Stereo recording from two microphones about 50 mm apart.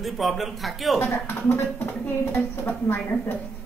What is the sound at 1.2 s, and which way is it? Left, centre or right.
A woman's voice, left.